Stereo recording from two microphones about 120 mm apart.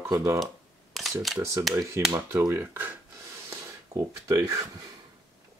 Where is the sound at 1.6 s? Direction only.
25° right (ahead or behind).